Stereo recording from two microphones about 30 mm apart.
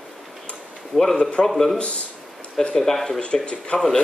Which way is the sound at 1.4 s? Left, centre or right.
Centre.